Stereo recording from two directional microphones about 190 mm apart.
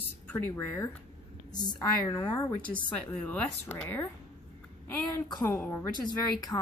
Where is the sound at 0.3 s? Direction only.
10° left (ahead or behind).